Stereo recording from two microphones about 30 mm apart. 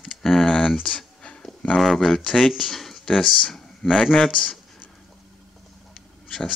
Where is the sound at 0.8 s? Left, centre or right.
Left.